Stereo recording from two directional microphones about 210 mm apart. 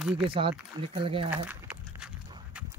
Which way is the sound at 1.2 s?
5° right (ahead or behind).